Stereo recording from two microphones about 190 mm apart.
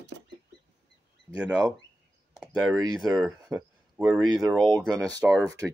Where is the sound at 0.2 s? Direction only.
70° right (ahead or behind).